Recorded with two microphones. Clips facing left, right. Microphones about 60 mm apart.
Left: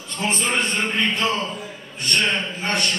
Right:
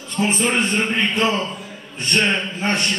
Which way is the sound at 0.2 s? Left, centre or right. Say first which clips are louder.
Right 3 dB; centre.